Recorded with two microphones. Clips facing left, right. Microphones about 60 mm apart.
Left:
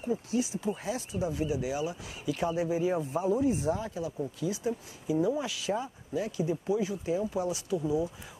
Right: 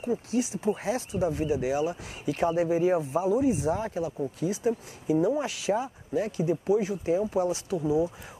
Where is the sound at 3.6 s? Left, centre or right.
Right.